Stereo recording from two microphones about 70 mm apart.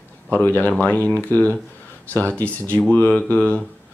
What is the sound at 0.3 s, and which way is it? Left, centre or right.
Speech, left.